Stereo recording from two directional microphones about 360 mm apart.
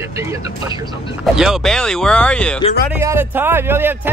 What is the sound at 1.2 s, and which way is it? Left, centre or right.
Speech, centre.